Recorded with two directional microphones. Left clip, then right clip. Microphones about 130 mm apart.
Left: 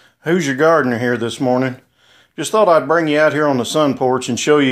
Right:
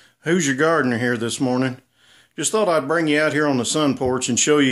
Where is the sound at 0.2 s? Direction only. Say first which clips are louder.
Left 4 dB; 20° right (ahead or behind).